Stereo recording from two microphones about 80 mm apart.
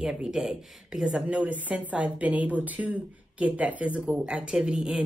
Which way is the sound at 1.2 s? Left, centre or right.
Centre.